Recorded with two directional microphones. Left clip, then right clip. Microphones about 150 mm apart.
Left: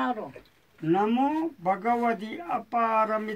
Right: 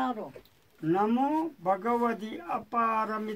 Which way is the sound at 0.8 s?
15° left (ahead or behind).